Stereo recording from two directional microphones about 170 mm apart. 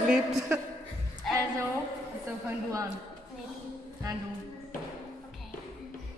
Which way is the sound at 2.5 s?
20° right (ahead or behind).